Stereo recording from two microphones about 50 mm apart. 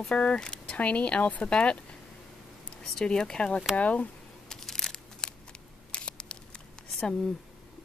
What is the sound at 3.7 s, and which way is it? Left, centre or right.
Speech, left.